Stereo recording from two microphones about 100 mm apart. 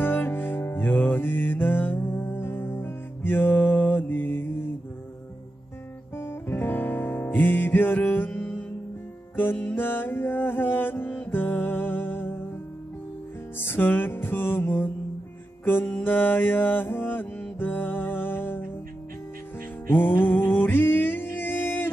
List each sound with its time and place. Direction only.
0.0 s music: 20° left (ahead or behind)
6.1 s music: 25° left (ahead or behind)
13.6 s music: 20° left (ahead or behind)
15.6 s mantra: 20° left (ahead or behind)
19.9 s music: 20° left (ahead or behind)